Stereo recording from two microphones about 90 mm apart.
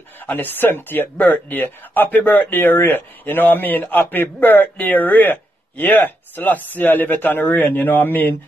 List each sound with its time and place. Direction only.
0.3 s speech: 20° left (ahead or behind)